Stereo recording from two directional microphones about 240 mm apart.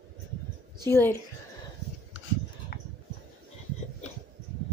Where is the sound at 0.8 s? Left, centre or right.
Centre.